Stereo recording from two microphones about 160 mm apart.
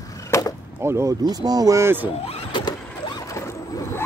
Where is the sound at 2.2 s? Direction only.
30° left (ahead or behind).